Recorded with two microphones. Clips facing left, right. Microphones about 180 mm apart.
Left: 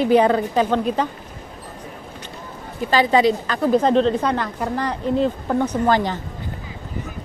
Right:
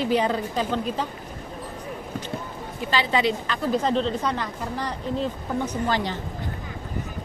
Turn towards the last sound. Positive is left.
turn(degrees=50)  # may be behind; listen again after turning